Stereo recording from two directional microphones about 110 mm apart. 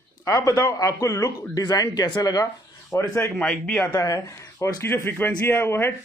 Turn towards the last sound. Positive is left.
turn(degrees=20)  # may be behind; listen again after turning